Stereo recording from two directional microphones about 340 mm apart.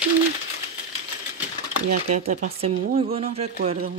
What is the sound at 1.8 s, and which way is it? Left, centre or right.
Speech, right.